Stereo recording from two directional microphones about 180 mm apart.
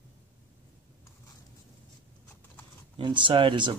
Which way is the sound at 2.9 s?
25° right (ahead or behind).